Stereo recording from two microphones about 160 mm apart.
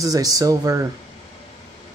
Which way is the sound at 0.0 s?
20° right (ahead or behind).